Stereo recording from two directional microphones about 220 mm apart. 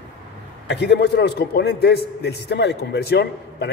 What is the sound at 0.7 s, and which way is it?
A man's voice, 50° left (ahead or behind).